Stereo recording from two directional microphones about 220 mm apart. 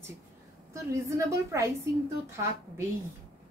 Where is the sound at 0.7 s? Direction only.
15° right (ahead or behind).